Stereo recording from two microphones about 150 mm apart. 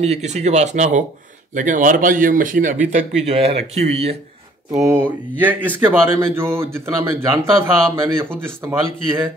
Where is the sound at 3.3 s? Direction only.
40° right (ahead or behind).